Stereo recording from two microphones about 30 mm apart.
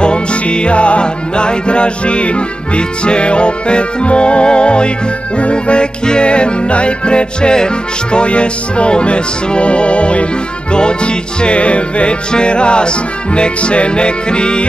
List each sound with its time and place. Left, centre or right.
0.0 s music: left